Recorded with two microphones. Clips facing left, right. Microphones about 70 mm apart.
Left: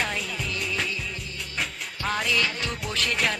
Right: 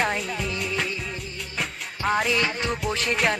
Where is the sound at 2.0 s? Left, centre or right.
Centre.